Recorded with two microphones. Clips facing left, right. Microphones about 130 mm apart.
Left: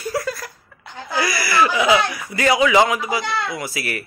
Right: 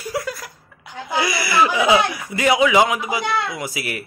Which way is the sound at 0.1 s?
15° right (ahead or behind).